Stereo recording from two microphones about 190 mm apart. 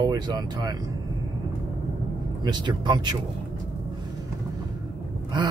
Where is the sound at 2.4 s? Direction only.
25° right (ahead or behind).